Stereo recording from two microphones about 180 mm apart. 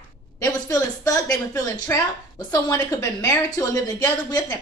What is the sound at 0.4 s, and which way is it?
Speech, 20° left (ahead or behind).